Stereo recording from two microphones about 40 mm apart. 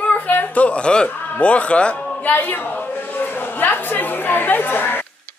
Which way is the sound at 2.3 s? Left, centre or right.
Left.